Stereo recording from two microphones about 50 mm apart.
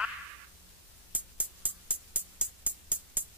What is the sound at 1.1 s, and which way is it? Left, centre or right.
Music, right.